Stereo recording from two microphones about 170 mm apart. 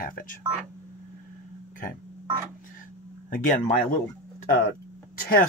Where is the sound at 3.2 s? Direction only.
55° left (ahead or behind).